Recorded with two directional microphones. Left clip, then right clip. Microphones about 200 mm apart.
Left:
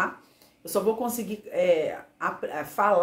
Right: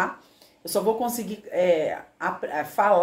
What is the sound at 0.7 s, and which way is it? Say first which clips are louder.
A woman's voice: right 2 dB; 5° right (ahead or behind).